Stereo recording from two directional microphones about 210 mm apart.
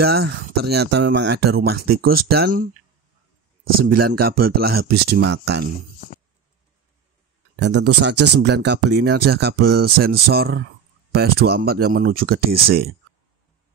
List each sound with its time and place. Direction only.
0.0 s speech: 50° right (ahead or behind)
3.8 s speech: 45° right (ahead or behind)
7.5 s speech: 55° right (ahead or behind)